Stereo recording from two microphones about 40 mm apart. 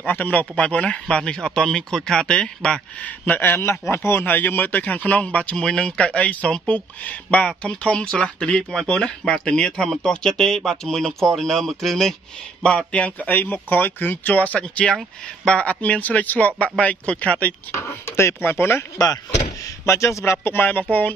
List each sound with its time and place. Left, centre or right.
0.0 s speech: left
0.7 s speech: left
3.0 s speech: left
3.3 s a man's voice: left
3.9 s speech: left
4.3 s speech: left
5.6 s speech: left
12.6 s speech: left
13.3 s speech: left
14.6 s speech: left
17.8 s speech: left
20.5 s speech: left